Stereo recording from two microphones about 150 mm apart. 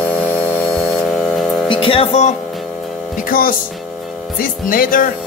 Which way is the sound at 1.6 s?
35° left (ahead or behind).